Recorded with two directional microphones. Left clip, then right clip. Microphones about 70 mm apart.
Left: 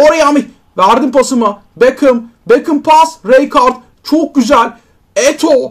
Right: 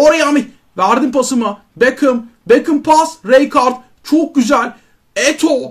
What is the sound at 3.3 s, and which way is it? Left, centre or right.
Speech, centre.